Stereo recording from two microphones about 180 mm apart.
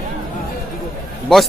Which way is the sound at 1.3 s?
5° left (ahead or behind).